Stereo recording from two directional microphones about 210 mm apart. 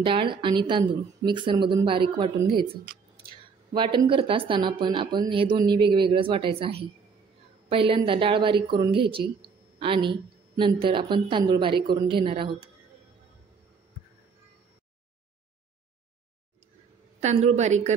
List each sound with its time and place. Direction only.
0.0 s speech: 25° right (ahead or behind)
7.9 s speech: 25° right (ahead or behind)
17.5 s a woman's voice: 35° right (ahead or behind)